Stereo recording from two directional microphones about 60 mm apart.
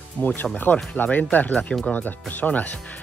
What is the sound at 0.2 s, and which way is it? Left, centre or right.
Speech, left.